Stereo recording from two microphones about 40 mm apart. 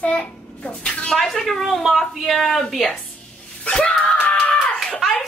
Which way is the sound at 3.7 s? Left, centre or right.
Left.